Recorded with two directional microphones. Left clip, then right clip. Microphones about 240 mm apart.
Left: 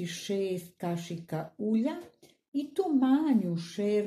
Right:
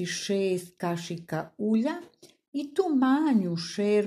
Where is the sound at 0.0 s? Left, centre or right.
Right.